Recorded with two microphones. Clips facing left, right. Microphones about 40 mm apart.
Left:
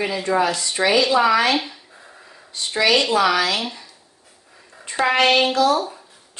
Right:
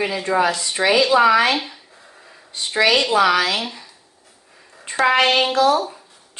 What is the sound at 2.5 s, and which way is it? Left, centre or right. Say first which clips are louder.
A woman's voice: right 1 dB; right.